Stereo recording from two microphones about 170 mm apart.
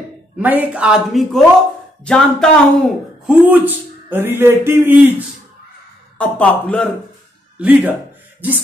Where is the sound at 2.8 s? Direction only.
5° right (ahead or behind).